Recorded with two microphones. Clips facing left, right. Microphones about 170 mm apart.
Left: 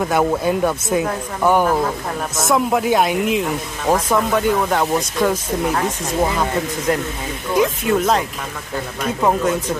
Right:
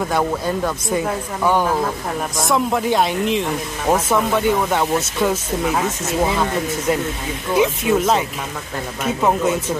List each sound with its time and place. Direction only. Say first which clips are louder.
0.0 s speech: left 3 dB; 5° left (ahead or behind)
6.9 s speech: even; 5° right (ahead or behind)